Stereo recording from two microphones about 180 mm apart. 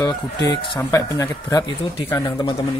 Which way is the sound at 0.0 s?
20° left (ahead or behind).